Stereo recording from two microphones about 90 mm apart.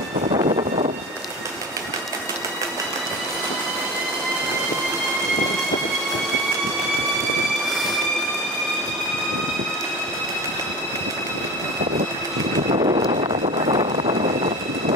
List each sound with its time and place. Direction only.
0.3 s vehicle: 90° right
12.7 s vehicle: 90° right